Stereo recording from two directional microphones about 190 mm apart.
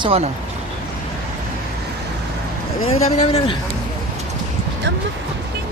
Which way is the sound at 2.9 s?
35° left (ahead or behind).